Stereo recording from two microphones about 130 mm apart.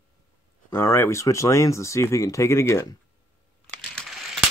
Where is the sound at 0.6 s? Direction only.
20° left (ahead or behind).